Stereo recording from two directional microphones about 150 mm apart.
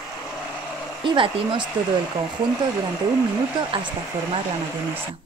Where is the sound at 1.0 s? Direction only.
35° right (ahead or behind).